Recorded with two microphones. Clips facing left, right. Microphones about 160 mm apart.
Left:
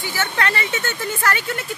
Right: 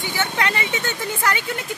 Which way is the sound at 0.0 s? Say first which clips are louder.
Even; 15° right (ahead or behind).